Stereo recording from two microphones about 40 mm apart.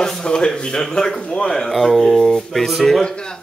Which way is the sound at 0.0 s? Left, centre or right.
Centre.